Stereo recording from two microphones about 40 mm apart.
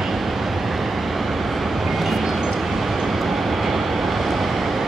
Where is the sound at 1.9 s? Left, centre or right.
Centre.